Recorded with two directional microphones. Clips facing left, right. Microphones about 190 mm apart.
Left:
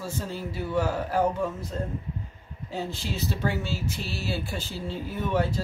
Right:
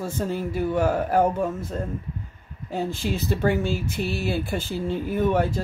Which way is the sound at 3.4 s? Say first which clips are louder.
Right 7 dB; 55° right (ahead or behind).